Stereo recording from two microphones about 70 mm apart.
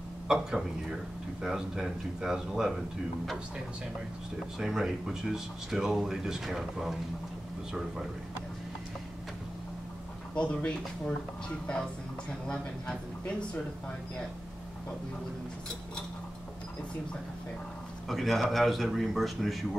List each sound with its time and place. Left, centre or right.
0.3 s speech: centre
4.6 s speech: centre
10.3 s speech: centre
18.0 s speech: centre